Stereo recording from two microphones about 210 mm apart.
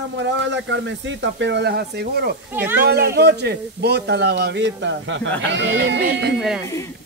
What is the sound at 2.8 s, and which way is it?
A man's voice, 50° right (ahead or behind).